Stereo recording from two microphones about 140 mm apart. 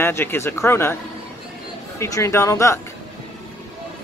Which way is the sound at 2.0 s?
20° left (ahead or behind).